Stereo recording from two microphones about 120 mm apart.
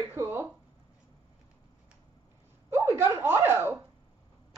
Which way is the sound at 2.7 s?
20° right (ahead or behind).